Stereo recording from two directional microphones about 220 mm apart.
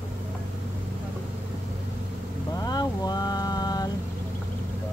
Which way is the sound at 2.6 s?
15° left (ahead or behind).